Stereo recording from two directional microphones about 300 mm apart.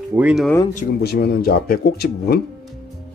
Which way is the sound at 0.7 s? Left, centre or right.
Left.